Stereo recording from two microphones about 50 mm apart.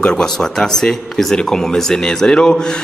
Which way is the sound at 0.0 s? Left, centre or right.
Centre.